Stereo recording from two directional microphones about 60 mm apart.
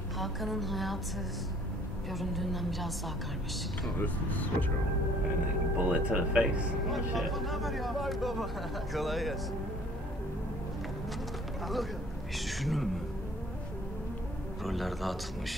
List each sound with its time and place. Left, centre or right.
0.2 s speech: centre
2.1 s speech: centre
4.0 s speech: left
5.8 s speech: right
7.2 s speech: centre
11.6 s speech: centre
14.6 s speech: centre